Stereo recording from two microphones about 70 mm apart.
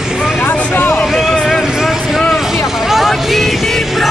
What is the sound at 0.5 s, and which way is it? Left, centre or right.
Vehicle, centre.